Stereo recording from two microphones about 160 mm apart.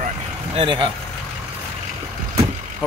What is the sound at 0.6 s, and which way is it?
Speech, 30° right (ahead or behind).